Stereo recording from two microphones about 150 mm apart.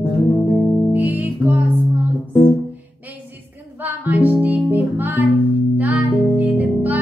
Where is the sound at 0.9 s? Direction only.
10° right (ahead or behind).